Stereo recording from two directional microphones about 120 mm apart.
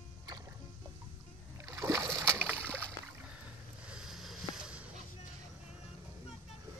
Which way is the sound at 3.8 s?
5° right (ahead or behind).